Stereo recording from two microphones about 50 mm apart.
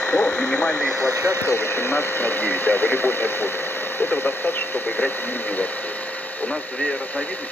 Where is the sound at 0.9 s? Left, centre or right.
Right.